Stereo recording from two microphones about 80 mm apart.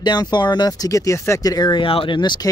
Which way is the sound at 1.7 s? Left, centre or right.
Left.